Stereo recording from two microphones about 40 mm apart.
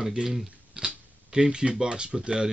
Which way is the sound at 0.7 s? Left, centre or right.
Right.